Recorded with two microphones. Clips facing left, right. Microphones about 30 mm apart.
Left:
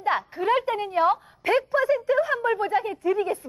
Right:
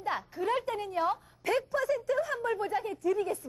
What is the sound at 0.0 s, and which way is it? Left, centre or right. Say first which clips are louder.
A woman's voice: left 8 dB; left.